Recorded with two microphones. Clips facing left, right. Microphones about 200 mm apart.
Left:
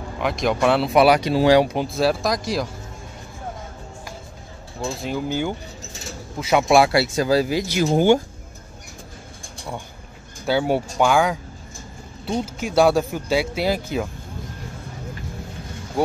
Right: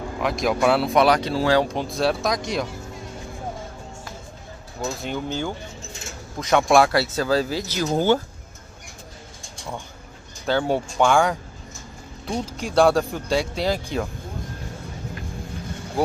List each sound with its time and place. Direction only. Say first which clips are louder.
0.2 s speech: left 1 dB; centre (ahead or behind)
5.0 s speech: left 5 dB; 10° left (ahead or behind)
5.8 s keys jangling: left 1 dB; 35° left (ahead or behind)
6.7 s speech: left 2 dB; 10° left (ahead or behind)
10.4 s speech: left 2 dB; 10° left (ahead or behind)